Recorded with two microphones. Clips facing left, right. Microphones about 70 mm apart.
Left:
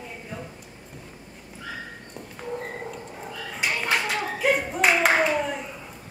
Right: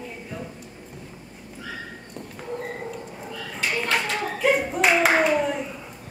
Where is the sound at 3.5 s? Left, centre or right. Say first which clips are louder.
Right 1 dB; centre.